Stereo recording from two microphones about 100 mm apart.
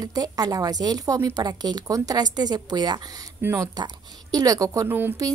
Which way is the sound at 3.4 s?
30° right (ahead or behind).